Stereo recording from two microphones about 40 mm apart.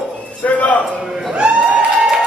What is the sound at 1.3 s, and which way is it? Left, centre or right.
Music, right.